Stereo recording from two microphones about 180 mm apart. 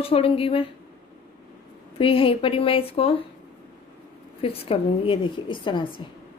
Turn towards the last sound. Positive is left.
turn(degrees=25)  # may be behind; listen again after turning